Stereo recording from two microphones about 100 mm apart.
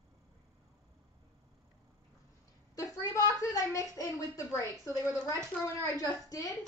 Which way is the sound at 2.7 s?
30° left (ahead or behind).